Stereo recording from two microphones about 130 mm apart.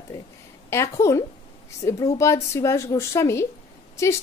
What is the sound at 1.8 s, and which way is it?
A woman's voice, 25° left (ahead or behind).